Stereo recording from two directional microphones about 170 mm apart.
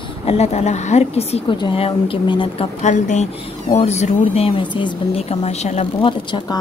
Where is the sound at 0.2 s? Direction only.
40° left (ahead or behind).